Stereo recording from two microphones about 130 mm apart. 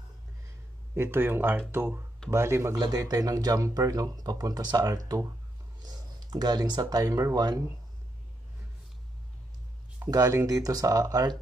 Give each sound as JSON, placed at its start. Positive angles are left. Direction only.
{"t": 0.9, "sound": "speech", "side_deg": -15}
{"t": 9.9, "sound": "speech", "side_deg": -25}